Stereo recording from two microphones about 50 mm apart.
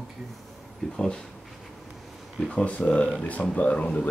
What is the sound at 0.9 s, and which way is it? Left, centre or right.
Speech, centre.